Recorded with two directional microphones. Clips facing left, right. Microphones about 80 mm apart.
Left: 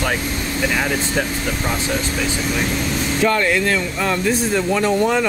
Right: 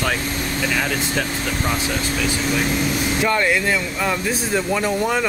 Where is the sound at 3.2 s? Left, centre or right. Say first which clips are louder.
Left 3 dB; centre.